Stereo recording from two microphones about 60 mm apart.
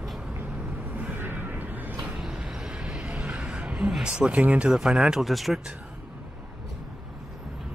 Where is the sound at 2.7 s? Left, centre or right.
Centre.